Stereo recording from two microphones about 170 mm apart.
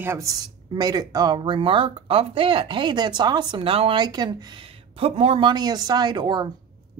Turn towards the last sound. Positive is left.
turn(degrees=-25)  # may be behind; listen again after turning